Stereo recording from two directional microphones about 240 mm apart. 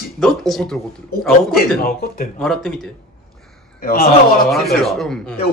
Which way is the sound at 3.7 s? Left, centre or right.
Left.